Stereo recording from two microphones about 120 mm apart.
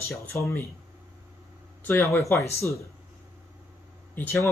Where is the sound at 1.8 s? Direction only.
15° left (ahead or behind).